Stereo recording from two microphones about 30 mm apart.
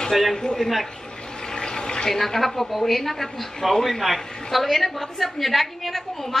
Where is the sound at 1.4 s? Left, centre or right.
Left.